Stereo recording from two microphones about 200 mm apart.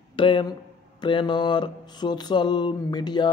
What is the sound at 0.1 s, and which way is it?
A man's voice, 25° left (ahead or behind).